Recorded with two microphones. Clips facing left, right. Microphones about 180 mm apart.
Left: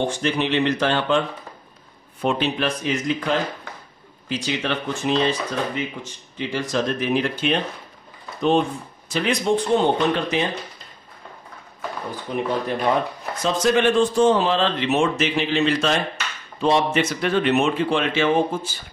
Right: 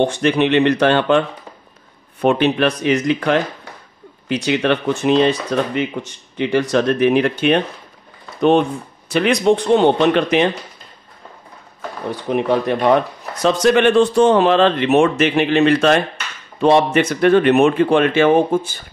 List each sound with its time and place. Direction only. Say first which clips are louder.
0.0 s speech: right 7 dB; 65° right (ahead or behind)
2.2 s speech: right 7 dB; 60° right (ahead or behind)
12.3 s speech: right 7 dB; 70° right (ahead or behind)